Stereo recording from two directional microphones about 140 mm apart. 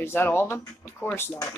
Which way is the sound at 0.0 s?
15° left (ahead or behind).